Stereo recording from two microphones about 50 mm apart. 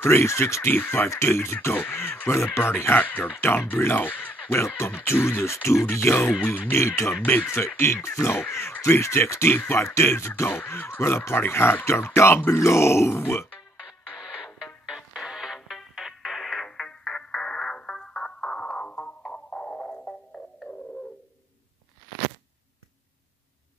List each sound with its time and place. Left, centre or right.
0.0 s speech: left
0.7 s speech: left
1.2 s speech: left
1.7 s speech: left
2.2 s speech: left
2.9 s speech: left
3.9 s speech: left
4.5 s speech: left
11.8 s speech: left
14.9 s music: centre
16.6 s music: centre